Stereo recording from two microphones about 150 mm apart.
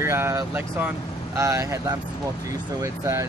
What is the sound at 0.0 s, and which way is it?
Speech, 15° right (ahead or behind).